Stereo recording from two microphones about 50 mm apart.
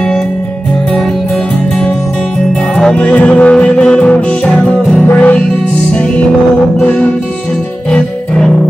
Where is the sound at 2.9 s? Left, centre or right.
Left.